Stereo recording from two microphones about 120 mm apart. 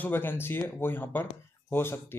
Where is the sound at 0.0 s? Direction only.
15° left (ahead or behind).